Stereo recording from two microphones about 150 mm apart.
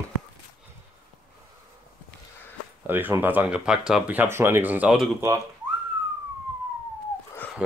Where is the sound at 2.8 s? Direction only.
15° right (ahead or behind).